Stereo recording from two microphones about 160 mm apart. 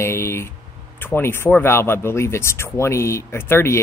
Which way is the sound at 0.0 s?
15° left (ahead or behind).